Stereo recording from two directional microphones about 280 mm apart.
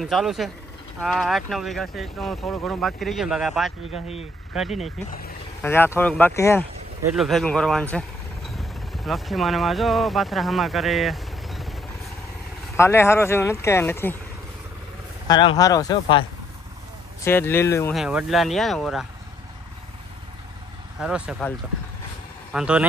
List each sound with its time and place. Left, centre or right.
0.0 s speech: centre
3.9 s speech: left
4.6 s speech: centre
12.7 s speech: centre
15.2 s speech: centre
21.0 s speech: centre